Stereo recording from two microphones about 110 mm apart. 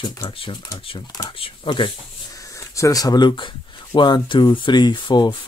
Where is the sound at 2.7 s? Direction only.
30° left (ahead or behind).